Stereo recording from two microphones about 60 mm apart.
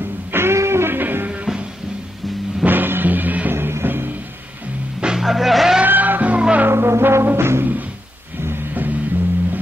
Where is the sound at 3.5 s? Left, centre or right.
Right.